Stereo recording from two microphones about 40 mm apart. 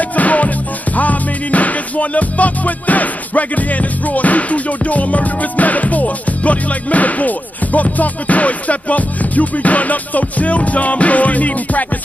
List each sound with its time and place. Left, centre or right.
0.0 s music: left